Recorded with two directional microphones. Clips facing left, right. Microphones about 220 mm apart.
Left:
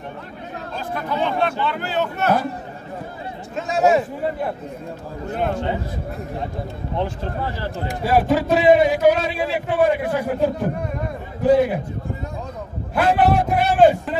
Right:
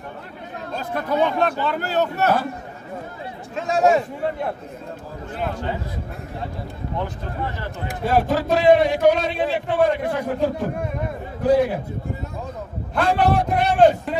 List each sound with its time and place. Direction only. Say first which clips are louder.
0.7 s speech: right 3 dB; 40° right (ahead or behind)
3.5 s a man's voice: even; centre (ahead or behind)
8.0 s a man's voice: left 2 dB; 5° left (ahead or behind)
12.9 s a man's voice: left 2 dB; 5° left (ahead or behind)